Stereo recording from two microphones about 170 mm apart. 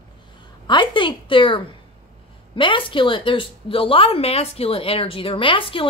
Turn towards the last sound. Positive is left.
turn(degrees=30)  # may be behind; listen again after turning